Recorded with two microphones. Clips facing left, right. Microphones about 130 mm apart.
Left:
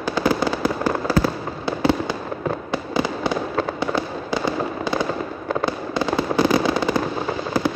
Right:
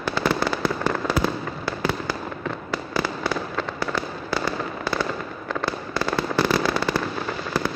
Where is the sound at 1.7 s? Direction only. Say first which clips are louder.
Left 6 dB; 20° left (ahead or behind).